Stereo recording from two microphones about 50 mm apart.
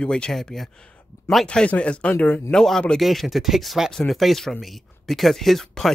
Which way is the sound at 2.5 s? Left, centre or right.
Centre.